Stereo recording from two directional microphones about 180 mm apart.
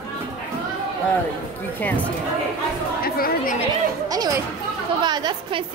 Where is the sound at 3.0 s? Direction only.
55° left (ahead or behind).